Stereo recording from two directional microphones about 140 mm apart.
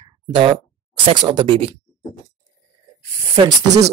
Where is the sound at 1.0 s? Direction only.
35° right (ahead or behind).